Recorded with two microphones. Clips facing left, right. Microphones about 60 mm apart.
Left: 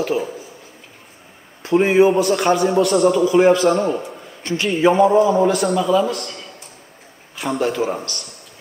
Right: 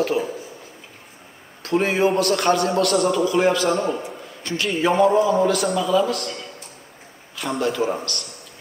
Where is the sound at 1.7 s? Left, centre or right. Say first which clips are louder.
Left 5 dB; centre.